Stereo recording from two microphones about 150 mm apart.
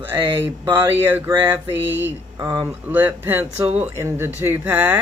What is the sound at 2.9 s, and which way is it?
Speech, 15° right (ahead or behind).